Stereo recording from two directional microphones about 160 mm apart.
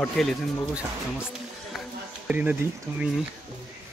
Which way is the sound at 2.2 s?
10° right (ahead or behind).